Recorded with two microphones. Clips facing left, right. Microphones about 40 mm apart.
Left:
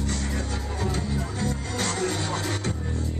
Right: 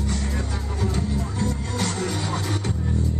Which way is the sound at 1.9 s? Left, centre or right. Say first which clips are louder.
Even; centre.